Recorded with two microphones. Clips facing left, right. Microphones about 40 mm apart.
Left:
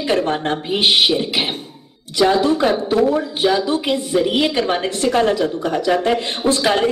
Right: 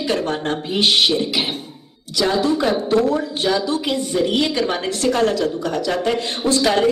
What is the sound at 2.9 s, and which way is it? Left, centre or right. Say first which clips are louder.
A woman's voice: left 1 dB; centre.